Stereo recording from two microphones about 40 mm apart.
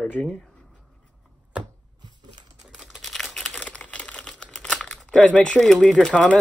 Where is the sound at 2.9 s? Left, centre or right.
Centre.